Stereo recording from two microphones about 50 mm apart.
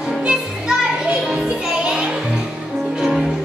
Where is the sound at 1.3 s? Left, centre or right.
Right.